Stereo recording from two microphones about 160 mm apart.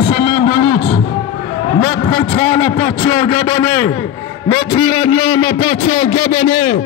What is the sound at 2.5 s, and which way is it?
A man's voice, 40° left (ahead or behind).